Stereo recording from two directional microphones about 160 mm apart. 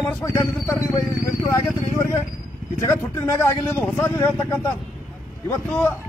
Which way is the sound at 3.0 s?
15° left (ahead or behind).